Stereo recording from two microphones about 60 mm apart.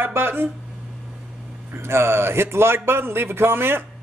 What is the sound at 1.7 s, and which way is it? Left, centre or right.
Speech, right.